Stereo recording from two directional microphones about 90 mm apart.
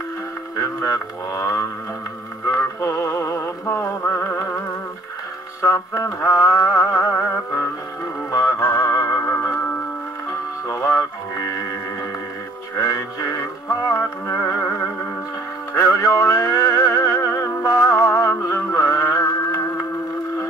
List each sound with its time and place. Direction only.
0.8 s speech: 35° left (ahead or behind)
2.4 s synthetic singing: 35° left (ahead or behind)
5.6 s music: 35° left (ahead or behind)
10.7 s music: 35° left (ahead or behind)
12.7 s music: 40° left (ahead or behind)
15.7 s music: 35° left (ahead or behind)